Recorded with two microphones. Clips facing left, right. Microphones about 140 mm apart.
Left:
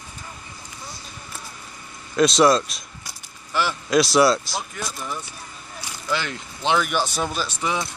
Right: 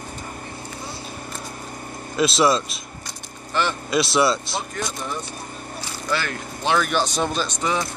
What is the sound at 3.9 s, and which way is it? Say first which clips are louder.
Speech: left 4 dB; centre (ahead or behind).